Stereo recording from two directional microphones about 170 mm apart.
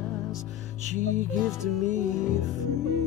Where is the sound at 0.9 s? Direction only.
45° right (ahead or behind).